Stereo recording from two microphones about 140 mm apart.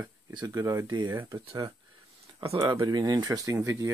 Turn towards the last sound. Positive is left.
turn(degrees=-20)  # may be behind; listen again after turning